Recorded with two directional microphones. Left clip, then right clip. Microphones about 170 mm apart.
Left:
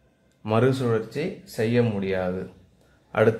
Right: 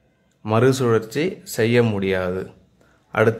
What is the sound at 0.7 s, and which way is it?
Speech, 35° right (ahead or behind).